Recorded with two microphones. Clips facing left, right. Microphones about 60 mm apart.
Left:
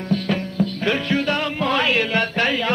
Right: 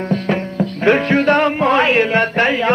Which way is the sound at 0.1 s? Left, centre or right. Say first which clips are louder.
Right 1 dB; right.